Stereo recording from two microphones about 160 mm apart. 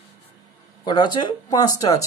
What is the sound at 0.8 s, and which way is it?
Speech, 30° left (ahead or behind).